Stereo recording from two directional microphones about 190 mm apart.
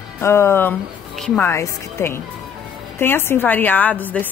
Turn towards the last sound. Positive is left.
turn(degrees=10)  # may be behind; listen again after turning